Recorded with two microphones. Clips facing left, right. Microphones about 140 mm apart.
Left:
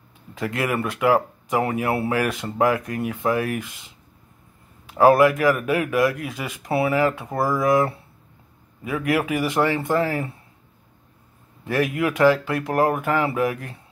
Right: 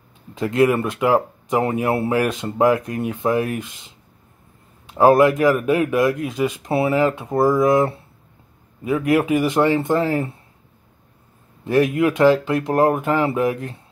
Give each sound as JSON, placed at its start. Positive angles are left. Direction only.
{"t": 0.3, "sound": "speech", "side_deg": -25}
{"t": 4.8, "sound": "speech", "side_deg": -20}
{"t": 11.6, "sound": "speech", "side_deg": -25}